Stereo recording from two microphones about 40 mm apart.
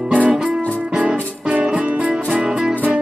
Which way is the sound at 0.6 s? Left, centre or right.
Left.